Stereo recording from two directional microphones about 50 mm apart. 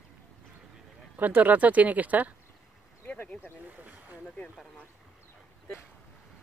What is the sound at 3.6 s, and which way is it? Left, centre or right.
Speech, right.